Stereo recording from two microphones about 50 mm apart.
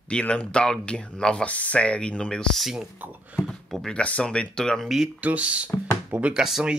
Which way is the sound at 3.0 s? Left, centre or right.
Right.